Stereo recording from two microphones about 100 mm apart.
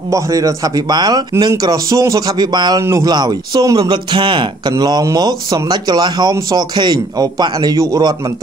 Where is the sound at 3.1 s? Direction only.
45° right (ahead or behind).